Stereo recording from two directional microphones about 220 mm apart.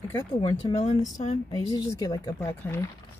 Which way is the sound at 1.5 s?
15° left (ahead or behind).